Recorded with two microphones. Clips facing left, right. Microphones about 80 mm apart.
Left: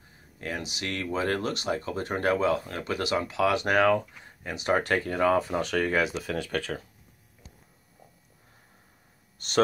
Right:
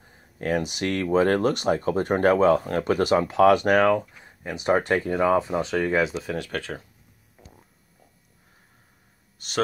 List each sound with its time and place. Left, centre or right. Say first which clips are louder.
0.4 s speech: right 9 dB; right
3.9 s speech: right 2 dB; centre
9.4 s speech: left 1 dB; centre